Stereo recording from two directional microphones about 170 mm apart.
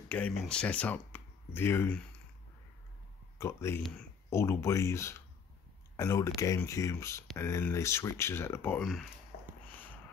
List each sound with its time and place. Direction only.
0.1 s speech: 5° left (ahead or behind)
3.3 s speech: 15° left (ahead or behind)
4.3 s speech: 15° left (ahead or behind)
9.3 s a sound: 65° left (ahead or behind)
9.7 s sniff: 10° left (ahead or behind)